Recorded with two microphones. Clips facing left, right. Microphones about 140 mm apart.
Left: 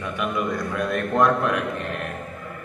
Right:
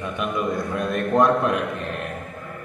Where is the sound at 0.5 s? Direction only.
25° right (ahead or behind).